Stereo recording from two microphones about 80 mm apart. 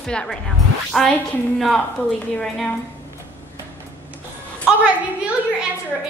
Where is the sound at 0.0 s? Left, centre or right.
Centre.